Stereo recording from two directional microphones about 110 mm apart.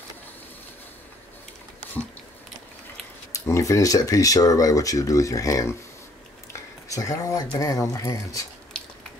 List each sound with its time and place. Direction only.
3.3 s speech: 30° left (ahead or behind)
6.5 s a sound: 30° left (ahead or behind)
7.5 s speech: 30° left (ahead or behind)